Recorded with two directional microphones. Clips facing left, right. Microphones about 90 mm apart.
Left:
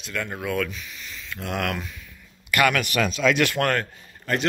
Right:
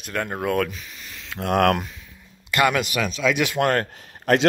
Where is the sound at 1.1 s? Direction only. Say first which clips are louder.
Right 8 dB; 65° right (ahead or behind).